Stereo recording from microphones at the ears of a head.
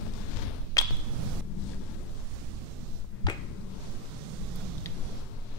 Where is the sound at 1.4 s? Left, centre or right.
Left.